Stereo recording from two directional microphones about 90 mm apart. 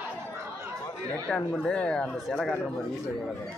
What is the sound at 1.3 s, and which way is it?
Speech, 15° left (ahead or behind).